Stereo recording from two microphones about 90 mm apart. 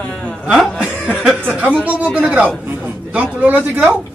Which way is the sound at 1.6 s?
15° right (ahead or behind).